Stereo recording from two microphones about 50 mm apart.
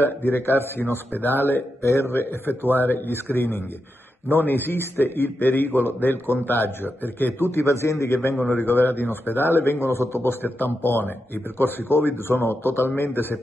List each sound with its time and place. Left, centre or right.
0.0 s a man's voice: left
1.8 s a man's voice: left
2.1 s a man's voice: left
4.3 s a man's voice: left
7.3 s a man's voice: left
8.1 s a man's voice: left
8.5 s a man's voice: left
10.4 s a man's voice: left